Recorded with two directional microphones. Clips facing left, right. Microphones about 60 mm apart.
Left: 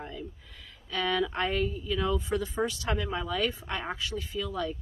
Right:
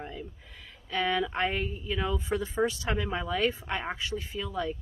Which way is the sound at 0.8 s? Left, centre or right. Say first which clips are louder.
Even; centre.